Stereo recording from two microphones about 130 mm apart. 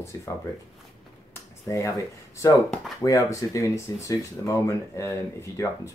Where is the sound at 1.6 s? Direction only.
25° left (ahead or behind).